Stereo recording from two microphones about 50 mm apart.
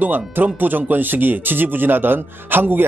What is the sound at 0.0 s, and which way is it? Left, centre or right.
Speech, right.